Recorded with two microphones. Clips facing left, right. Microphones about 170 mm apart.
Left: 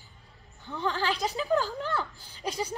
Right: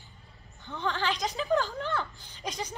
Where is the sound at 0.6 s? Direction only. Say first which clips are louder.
Left 1 dB; centre (ahead or behind).